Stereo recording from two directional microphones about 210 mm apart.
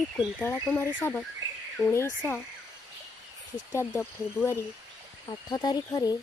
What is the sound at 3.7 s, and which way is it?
Speech, 10° left (ahead or behind).